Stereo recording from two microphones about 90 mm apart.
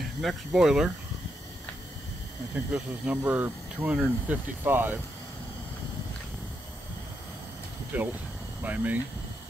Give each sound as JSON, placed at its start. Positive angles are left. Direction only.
{"t": 0.0, "sound": "speech", "side_deg": 0}
{"t": 2.5, "sound": "speech", "side_deg": -15}
{"t": 3.9, "sound": "speech", "side_deg": -10}
{"t": 4.6, "sound": "speech", "side_deg": -25}
{"t": 7.9, "sound": "speech", "side_deg": -20}